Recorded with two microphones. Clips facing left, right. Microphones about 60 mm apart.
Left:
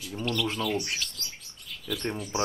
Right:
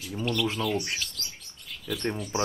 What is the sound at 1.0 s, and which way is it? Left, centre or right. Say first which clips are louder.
Bird: even; centre.